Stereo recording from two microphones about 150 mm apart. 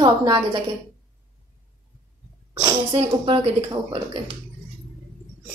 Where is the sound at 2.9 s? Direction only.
35° right (ahead or behind).